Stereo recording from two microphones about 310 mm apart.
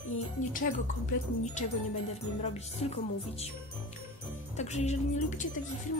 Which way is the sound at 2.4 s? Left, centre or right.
Centre.